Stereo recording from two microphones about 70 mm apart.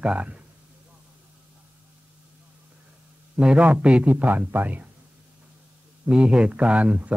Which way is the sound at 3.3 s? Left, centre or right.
Centre.